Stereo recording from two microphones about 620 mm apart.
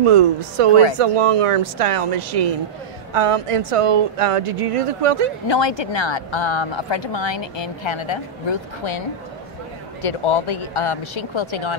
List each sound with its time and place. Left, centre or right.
0.0 s speech: right
4.8 s speech: right
5.5 s speech: left
10.0 s speech: left